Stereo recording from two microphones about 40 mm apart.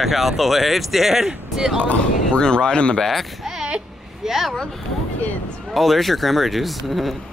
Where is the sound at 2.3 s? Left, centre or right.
Left.